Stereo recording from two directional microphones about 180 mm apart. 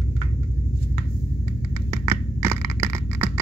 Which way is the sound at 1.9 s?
15° right (ahead or behind).